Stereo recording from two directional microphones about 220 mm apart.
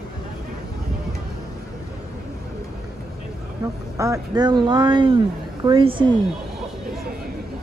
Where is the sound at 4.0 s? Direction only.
15° right (ahead or behind).